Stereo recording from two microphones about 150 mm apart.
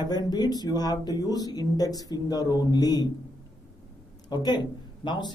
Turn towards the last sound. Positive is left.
turn(degrees=30)  # may be behind; listen again after turning